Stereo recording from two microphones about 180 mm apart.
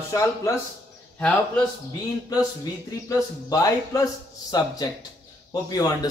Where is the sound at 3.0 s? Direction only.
20° left (ahead or behind).